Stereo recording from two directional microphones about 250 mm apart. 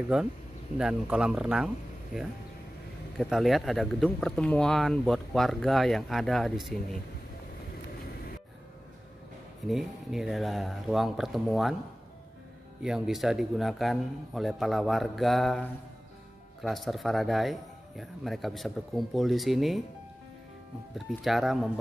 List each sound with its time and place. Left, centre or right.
0.1 s speech: centre
9.7 s speech: centre
12.8 s speech: centre
20.9 s speech: centre